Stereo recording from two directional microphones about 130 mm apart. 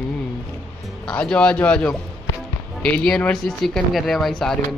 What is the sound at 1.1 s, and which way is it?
A man's voice, 5° left (ahead or behind).